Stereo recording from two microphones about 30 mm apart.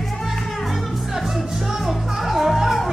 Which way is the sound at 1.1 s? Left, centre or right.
Centre.